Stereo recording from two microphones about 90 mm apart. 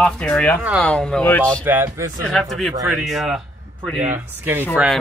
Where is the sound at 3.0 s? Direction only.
5° right (ahead or behind).